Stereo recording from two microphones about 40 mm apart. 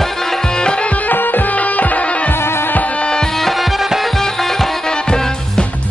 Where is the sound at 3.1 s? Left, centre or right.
Centre.